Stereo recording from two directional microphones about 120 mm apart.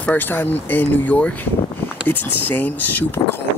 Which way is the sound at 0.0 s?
15° left (ahead or behind).